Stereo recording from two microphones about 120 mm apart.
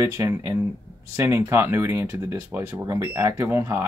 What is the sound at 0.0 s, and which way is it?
Speech, 25° right (ahead or behind).